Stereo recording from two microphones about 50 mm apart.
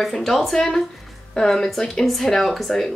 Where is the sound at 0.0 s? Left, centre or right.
Centre.